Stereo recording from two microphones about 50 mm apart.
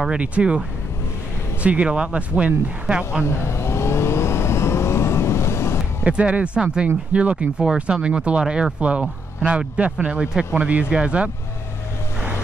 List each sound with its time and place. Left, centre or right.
0.2 s speech: right
3.3 s vehicle: left
6.0 s speech: right